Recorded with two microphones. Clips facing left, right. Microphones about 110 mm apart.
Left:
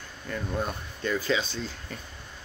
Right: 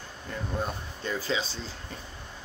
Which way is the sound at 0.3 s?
25° right (ahead or behind).